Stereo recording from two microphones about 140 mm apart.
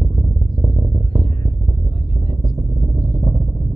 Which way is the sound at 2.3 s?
40° right (ahead or behind).